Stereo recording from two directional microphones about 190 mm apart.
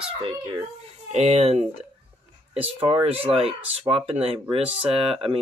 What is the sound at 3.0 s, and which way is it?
Speech, 30° right (ahead or behind).